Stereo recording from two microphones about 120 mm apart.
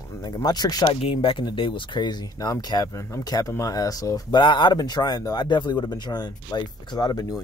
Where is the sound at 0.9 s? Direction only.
50° left (ahead or behind).